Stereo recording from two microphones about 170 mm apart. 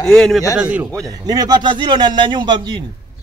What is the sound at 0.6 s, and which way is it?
Speech, 10° right (ahead or behind).